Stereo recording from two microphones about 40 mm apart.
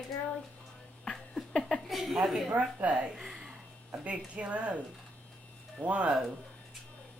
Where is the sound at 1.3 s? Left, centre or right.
Centre.